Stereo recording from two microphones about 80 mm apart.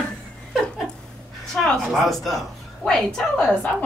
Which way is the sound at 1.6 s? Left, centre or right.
Centre.